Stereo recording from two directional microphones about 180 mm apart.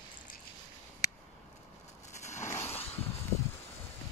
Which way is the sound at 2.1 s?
40° left (ahead or behind).